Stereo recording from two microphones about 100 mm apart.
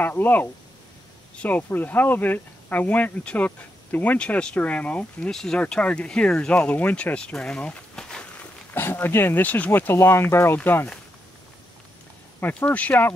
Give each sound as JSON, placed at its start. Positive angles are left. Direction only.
{"t": 0.0, "sound": "speech", "side_deg": 20}
{"t": 8.7, "sound": "speech", "side_deg": 20}
{"t": 12.4, "sound": "speech", "side_deg": 15}